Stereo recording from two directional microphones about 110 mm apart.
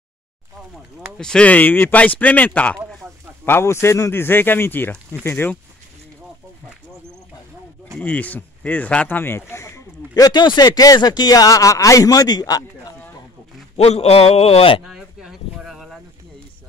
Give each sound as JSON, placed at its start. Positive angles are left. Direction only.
{"t": 1.1, "sound": "speech", "side_deg": 5}
{"t": 3.4, "sound": "speech", "side_deg": 25}
{"t": 8.0, "sound": "speech", "side_deg": 15}
{"t": 13.7, "sound": "a man's voice", "side_deg": 75}
{"t": 14.9, "sound": "a sound", "side_deg": -5}